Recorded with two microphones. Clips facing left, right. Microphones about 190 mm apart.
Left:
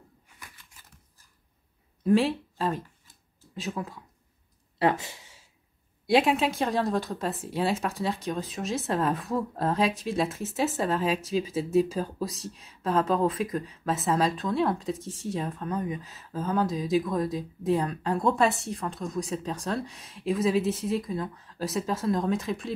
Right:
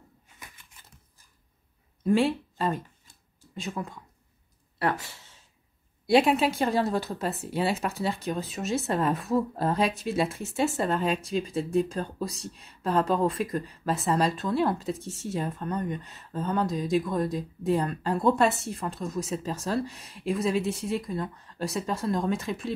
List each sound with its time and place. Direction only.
2.0 s speech: centre (ahead or behind)
4.7 s a sound: 20° left (ahead or behind)
6.0 s speech: centre (ahead or behind)